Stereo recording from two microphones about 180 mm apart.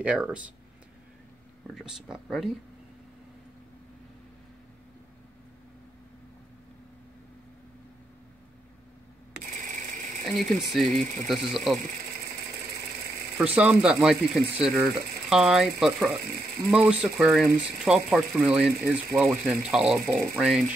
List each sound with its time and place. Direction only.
0.0 s speech: 5° right (ahead or behind)
1.8 s speech: 5° right (ahead or behind)
9.6 s a sound: 45° right (ahead or behind)
10.2 s speech: centre (ahead or behind)
13.4 s speech: 5° right (ahead or behind)